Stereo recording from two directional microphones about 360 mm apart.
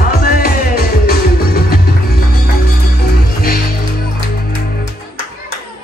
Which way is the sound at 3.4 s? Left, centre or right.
Left.